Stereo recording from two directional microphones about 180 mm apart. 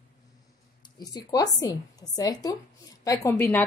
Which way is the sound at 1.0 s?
20° left (ahead or behind).